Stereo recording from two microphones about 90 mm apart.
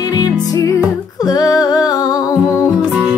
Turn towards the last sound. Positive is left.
turn(degrees=-20)  # may be behind; listen again after turning